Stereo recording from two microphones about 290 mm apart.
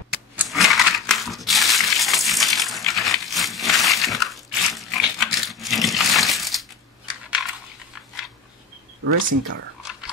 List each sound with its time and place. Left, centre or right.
0.4 s crushing: centre
9.0 s speech: right